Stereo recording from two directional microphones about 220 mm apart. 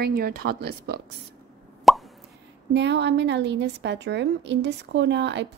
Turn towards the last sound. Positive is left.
turn(degrees=-50)  # may be behind; listen again after turning